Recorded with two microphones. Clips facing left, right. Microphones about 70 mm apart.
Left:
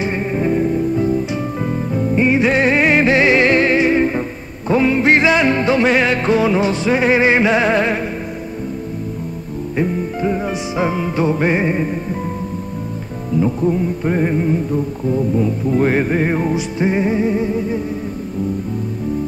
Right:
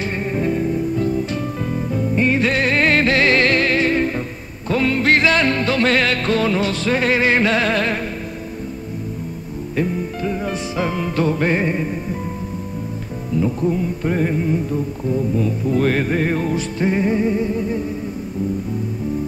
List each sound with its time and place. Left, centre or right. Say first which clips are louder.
0.0 s music: left 3 dB; centre
9.8 s music: left 2 dB; left
13.4 s music: left 3 dB; centre